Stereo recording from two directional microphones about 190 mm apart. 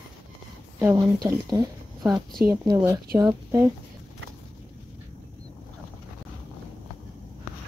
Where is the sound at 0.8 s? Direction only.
15° right (ahead or behind).